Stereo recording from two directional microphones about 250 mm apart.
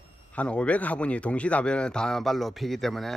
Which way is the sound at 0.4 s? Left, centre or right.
Centre.